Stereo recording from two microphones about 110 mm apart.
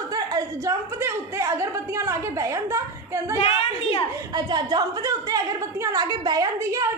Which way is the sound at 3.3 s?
60° left (ahead or behind).